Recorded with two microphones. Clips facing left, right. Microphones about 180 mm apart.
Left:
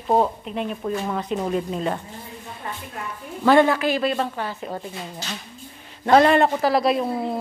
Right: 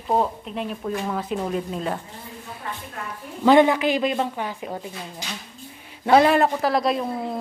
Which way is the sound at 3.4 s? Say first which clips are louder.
Right 1 dB; 15° right (ahead or behind).